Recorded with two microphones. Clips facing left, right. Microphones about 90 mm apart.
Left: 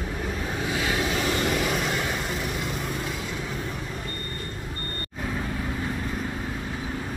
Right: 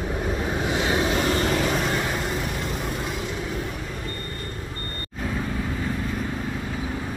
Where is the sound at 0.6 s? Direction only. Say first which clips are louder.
Right 3 dB; 25° right (ahead or behind).